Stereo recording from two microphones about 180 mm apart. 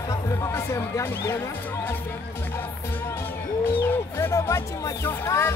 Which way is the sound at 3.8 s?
10° left (ahead or behind).